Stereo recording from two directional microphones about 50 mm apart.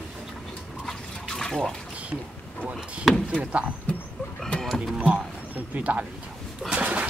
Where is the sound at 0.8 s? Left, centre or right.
Centre.